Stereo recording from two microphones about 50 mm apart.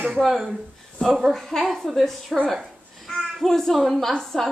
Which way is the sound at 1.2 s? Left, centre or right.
Centre.